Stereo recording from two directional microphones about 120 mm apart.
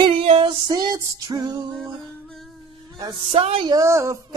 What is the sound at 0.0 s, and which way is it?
Female singing, 50° right (ahead or behind).